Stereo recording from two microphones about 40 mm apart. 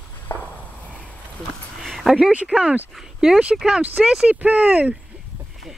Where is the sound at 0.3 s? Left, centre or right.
Left.